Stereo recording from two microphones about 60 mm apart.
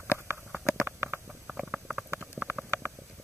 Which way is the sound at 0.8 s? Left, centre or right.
Right.